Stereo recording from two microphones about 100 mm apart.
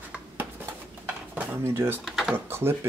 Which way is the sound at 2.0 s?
5° right (ahead or behind).